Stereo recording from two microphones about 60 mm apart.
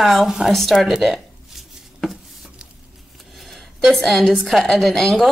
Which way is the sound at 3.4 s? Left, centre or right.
Centre.